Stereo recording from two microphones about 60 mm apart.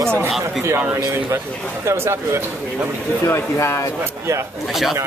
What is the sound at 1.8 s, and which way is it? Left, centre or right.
Speech, right.